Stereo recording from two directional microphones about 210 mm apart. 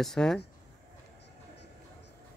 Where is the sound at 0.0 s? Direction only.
Centre (ahead or behind).